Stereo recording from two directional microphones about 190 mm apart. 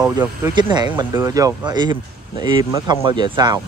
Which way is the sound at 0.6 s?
25° right (ahead or behind).